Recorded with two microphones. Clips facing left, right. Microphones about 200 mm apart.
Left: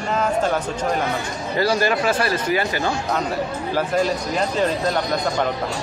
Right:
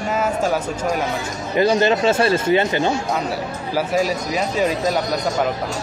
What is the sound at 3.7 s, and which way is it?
Speech, 10° right (ahead or behind).